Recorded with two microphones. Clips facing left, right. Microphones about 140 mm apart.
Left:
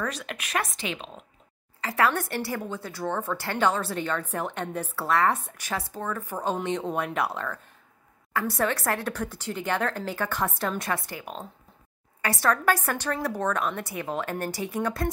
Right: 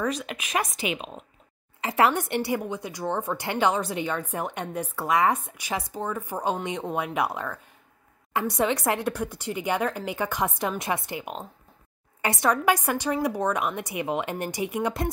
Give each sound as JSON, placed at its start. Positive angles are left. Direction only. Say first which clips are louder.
{"t": 0.0, "sound": "speech", "louder": "right 4 dB", "side_deg": -5}
{"t": 1.8, "sound": "speech", "louder": "right 2 dB", "side_deg": -20}